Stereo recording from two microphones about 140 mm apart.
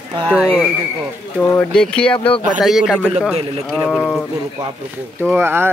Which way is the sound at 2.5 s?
5° right (ahead or behind).